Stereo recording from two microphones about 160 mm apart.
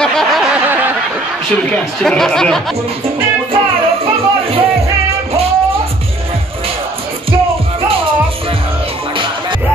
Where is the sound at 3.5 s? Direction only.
35° right (ahead or behind).